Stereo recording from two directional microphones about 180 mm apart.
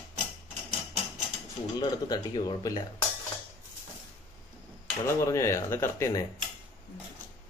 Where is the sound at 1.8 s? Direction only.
20° left (ahead or behind).